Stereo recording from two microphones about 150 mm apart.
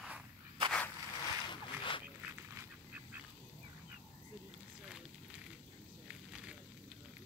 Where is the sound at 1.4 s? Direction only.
35° left (ahead or behind).